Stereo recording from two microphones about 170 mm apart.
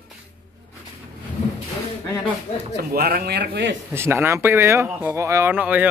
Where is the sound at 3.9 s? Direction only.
15° right (ahead or behind).